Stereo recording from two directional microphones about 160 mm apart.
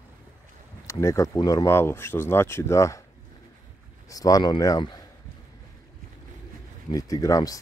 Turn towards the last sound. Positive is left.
turn(degrees=20)  # may be behind; listen again after turning